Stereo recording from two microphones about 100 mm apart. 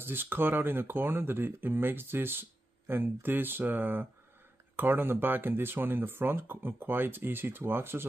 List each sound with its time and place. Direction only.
0.0 s speech: 20° right (ahead or behind)